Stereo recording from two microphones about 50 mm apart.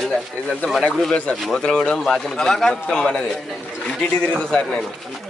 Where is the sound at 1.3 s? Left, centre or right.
Centre.